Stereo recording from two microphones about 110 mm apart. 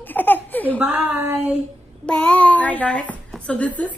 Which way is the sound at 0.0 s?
15° left (ahead or behind).